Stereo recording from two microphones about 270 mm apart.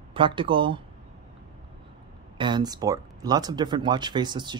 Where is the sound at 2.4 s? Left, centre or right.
Centre.